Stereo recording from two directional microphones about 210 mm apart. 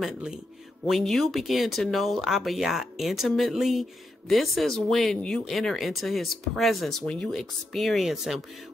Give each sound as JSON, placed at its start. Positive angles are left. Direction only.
{"t": 0.0, "sound": "speech", "side_deg": -5}